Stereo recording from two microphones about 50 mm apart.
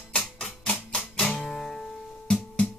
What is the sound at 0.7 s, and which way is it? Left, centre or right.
Music, centre.